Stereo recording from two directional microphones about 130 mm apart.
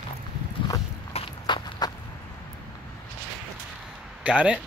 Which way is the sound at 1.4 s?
35° left (ahead or behind).